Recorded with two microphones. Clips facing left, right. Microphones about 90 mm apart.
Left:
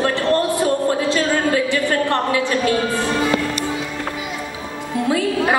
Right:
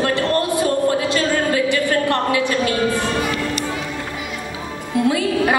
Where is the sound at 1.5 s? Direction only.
20° left (ahead or behind).